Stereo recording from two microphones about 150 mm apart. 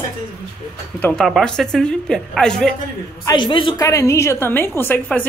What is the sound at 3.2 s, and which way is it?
Speech, 30° left (ahead or behind).